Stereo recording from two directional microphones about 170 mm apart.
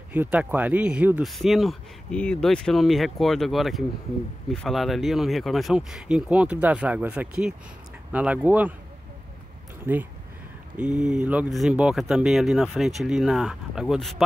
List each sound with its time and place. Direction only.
0.1 s speech: 10° right (ahead or behind)
9.9 s speech: 10° right (ahead or behind)